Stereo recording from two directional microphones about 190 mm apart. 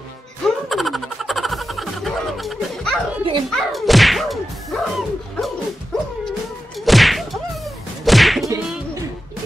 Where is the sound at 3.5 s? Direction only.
Centre (ahead or behind).